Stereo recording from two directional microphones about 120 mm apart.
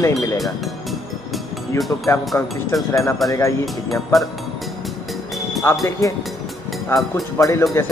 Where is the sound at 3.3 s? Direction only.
25° left (ahead or behind).